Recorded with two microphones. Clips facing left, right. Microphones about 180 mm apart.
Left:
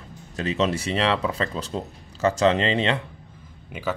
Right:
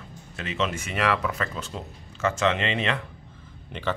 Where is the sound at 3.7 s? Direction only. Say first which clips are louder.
Left 1 dB; 10° left (ahead or behind).